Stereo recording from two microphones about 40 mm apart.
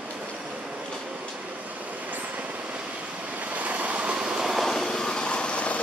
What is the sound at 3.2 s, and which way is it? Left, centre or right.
Waves, right.